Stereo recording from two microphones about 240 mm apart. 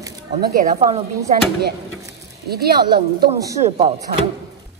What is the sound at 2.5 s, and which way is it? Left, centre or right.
Speech, right.